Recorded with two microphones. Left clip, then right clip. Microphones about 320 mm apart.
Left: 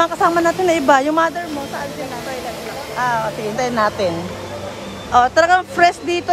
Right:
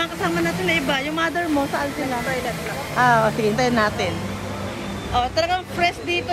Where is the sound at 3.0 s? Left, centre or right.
Centre.